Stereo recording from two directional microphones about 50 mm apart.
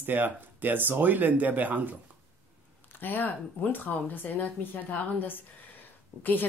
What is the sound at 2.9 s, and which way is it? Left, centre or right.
A woman's voice, left.